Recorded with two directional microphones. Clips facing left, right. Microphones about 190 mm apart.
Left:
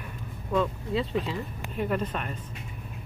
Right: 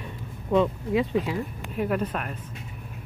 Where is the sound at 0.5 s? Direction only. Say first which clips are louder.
Right 5 dB; 15° right (ahead or behind).